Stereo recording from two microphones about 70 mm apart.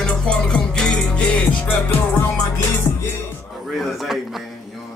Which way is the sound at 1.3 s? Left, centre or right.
Centre.